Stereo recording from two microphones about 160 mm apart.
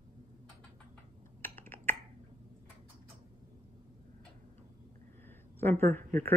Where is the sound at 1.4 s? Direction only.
15° left (ahead or behind).